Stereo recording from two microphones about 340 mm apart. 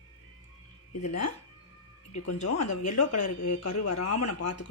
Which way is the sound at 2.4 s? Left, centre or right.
Left.